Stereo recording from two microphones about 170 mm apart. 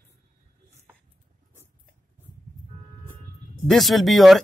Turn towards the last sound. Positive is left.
turn(degrees=0)  # may be behind; listen again after turning